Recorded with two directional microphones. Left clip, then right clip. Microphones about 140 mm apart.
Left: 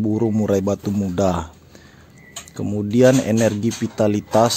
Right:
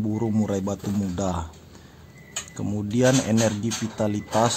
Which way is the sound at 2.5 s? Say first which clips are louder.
Left 8 dB; 30° left (ahead or behind).